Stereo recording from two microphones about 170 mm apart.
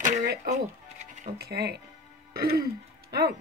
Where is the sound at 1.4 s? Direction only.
70° right (ahead or behind).